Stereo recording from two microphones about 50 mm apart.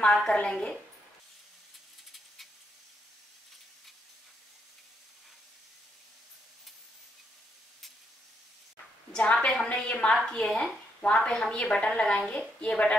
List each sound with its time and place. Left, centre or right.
0.1 s a woman's voice: centre
9.1 s a woman's voice: left